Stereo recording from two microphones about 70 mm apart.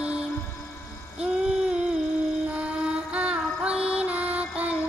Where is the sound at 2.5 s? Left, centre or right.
Centre.